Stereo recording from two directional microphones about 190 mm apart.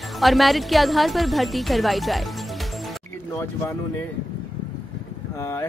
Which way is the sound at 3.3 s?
15° left (ahead or behind).